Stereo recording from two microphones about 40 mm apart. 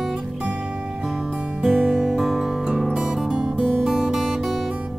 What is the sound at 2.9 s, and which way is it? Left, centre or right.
Music, centre.